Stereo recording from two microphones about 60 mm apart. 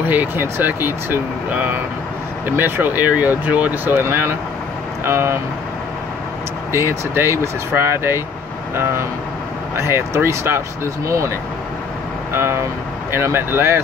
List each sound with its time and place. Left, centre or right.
0.0 s speech: right
3.9 s speech: right
6.7 s speech: right
9.8 s speech: right
11.1 s speech: right
12.3 s speech: right